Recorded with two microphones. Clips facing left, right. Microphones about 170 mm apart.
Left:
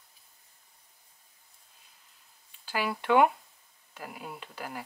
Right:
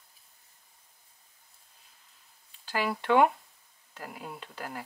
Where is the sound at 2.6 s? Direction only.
5° left (ahead or behind).